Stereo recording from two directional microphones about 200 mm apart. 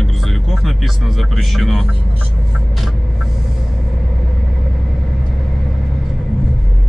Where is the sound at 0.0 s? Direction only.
Centre (ahead or behind).